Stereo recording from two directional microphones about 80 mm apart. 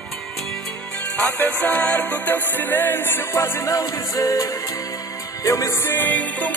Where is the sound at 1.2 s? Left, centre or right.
Left.